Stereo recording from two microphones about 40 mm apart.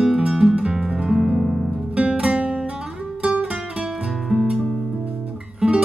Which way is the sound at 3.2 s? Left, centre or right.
Right.